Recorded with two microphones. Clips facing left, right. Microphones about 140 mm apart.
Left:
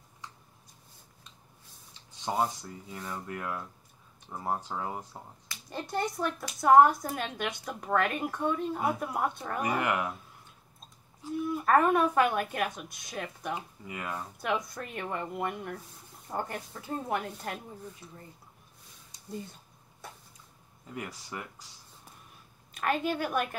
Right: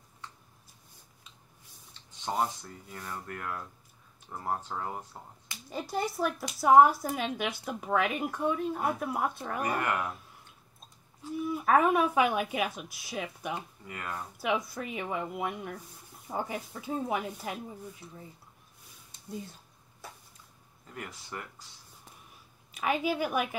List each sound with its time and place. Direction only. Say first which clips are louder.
2.2 s speech: left 1 dB; 15° left (ahead or behind)
5.7 s speech: even; 5° right (ahead or behind)
9.6 s speech: left 1 dB; 15° left (ahead or behind)
11.3 s speech: even; 5° right (ahead or behind)
13.6 s speech: left 2 dB; 15° left (ahead or behind)
14.4 s speech: right 2 dB; 5° right (ahead or behind)
20.0 s a sound: left 1 dB; centre (ahead or behind)
20.9 s speech: left 2 dB; 15° left (ahead or behind)
22.7 s speech: even; 5° right (ahead or behind)